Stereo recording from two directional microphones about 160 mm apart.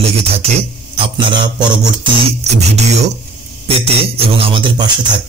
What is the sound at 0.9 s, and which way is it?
Mantra, 35° right (ahead or behind).